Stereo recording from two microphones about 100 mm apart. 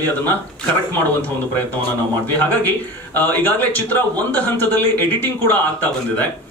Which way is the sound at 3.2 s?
20° left (ahead or behind).